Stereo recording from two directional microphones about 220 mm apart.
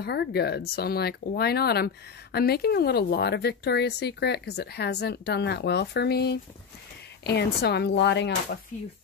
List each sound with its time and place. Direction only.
0.0 s speech: 50° left (ahead or behind)